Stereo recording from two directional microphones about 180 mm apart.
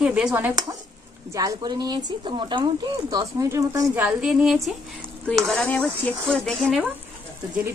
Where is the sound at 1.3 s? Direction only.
20° right (ahead or behind); by 6.8 s centre (ahead or behind).